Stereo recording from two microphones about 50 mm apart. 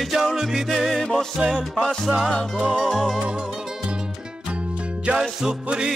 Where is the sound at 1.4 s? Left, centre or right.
Right.